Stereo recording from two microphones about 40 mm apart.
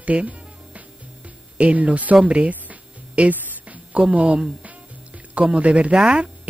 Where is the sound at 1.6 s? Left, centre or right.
Right.